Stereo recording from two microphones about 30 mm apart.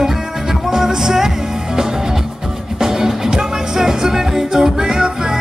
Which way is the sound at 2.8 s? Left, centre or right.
Centre.